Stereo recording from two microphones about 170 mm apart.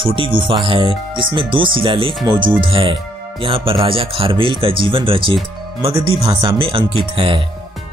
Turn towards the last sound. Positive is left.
turn(degrees=-30)  # may be behind; listen again after turning